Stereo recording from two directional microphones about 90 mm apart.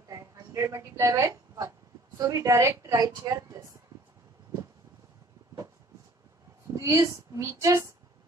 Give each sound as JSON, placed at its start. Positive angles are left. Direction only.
{"t": 0.4, "sound": "a woman's voice", "side_deg": -35}
{"t": 6.7, "sound": "a woman's voice", "side_deg": -35}